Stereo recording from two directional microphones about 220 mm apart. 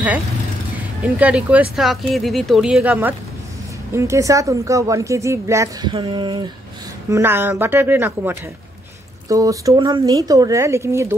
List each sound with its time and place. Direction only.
1.0 s speech: 5° right (ahead or behind)
7.1 s speech: 10° right (ahead or behind)